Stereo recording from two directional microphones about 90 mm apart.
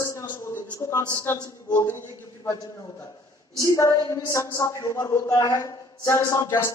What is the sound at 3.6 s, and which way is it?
A woman's voice, 40° left (ahead or behind).